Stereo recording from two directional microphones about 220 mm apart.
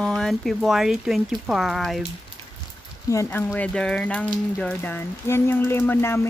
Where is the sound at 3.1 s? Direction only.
10° left (ahead or behind).